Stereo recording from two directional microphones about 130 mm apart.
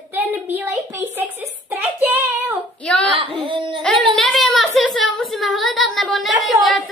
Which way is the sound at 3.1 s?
40° right (ahead or behind).